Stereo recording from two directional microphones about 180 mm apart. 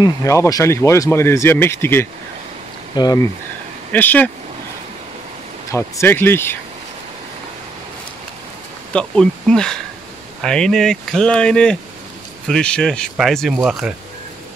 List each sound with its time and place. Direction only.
0.0 s speech: 15° left (ahead or behind)
3.9 s speech: 10° left (ahead or behind)
5.7 s speech: 15° left (ahead or behind)
8.9 s speech: 5° left (ahead or behind)